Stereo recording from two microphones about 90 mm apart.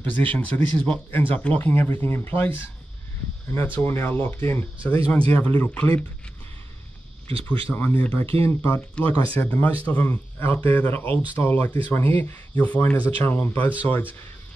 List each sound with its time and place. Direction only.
0.0 s speech: 20° left (ahead or behind)
7.4 s speech: 20° left (ahead or behind)
8.2 s speech: 30° left (ahead or behind)